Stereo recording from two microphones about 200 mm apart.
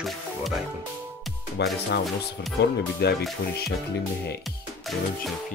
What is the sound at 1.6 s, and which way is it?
Music, 55° left (ahead or behind).